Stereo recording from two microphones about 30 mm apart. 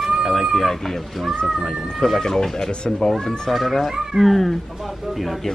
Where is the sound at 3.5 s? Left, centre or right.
Centre.